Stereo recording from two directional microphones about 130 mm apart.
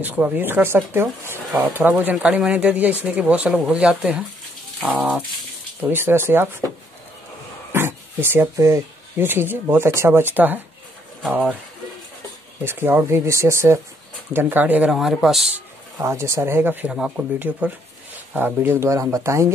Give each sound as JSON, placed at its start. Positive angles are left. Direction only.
{"t": 0.0, "sound": "speech", "side_deg": -10}
{"t": 5.8, "sound": "speech", "side_deg": -15}
{"t": 7.7, "sound": "speech", "side_deg": -20}
{"t": 12.6, "sound": "speech", "side_deg": -15}
{"t": 16.0, "sound": "speech", "side_deg": -20}
{"t": 16.9, "sound": "speech", "side_deg": -5}